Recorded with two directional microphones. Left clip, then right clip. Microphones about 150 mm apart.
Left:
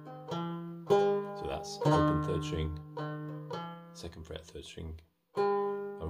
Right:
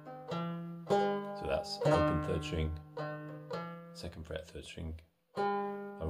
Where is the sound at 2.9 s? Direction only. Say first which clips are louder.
Left 1 dB; 45° left (ahead or behind).